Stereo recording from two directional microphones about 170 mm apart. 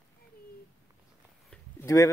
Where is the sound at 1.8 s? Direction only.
20° left (ahead or behind).